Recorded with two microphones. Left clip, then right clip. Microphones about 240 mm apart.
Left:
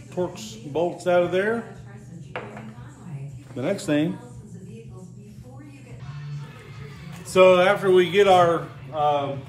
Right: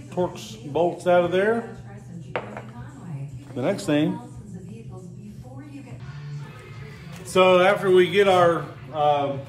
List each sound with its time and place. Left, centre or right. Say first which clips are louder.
0.1 s speech: right 2 dB; centre
2.3 s ping: right 4 dB; right
3.5 s speech: right 1 dB; centre
7.3 s a man's voice: left 1 dB; centre